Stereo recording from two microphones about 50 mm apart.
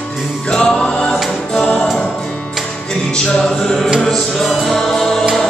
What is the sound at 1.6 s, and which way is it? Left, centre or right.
A capella, left.